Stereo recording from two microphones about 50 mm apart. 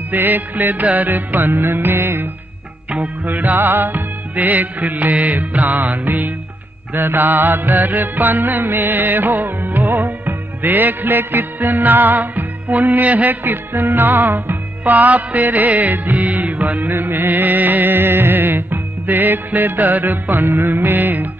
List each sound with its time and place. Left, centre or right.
0.1 s music: right
2.9 s music: right
6.9 s music: right